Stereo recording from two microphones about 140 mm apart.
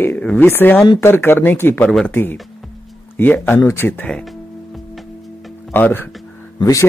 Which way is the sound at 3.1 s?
15° left (ahead or behind).